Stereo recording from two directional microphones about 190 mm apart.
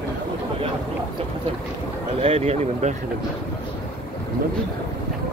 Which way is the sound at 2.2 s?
35° right (ahead or behind).